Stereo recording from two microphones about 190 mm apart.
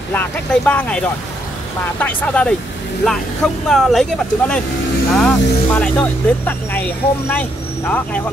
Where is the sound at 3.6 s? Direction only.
Centre (ahead or behind).